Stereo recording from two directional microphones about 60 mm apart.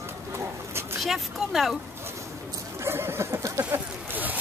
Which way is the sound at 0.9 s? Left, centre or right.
Centre.